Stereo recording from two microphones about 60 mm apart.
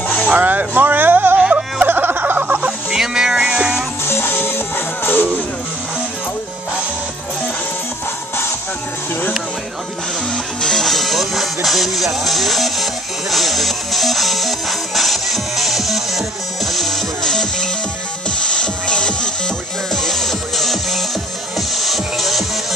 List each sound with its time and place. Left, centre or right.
0.4 s music: right
1.4 s music: right
1.9 s a sound: right
2.9 s music: centre
4.0 s music: left
10.3 s music: centre